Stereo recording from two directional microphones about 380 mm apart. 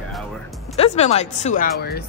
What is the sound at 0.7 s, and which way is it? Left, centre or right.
Speech, centre.